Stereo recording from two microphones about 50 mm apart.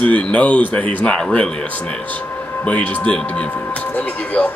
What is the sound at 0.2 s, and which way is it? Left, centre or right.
Speech, left.